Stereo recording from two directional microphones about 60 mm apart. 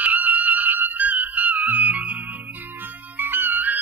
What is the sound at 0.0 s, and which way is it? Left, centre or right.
Music, right.